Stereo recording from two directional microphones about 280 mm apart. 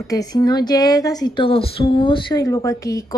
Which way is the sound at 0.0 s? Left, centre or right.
Centre.